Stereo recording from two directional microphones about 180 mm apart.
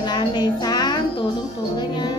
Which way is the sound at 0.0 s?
25° left (ahead or behind).